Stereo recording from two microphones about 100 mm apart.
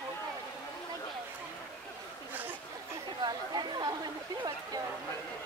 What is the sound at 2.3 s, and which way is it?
Chatter, 15° right (ahead or behind).